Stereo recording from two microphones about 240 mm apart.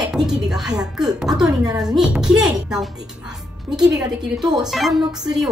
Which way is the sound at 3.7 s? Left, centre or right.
Centre.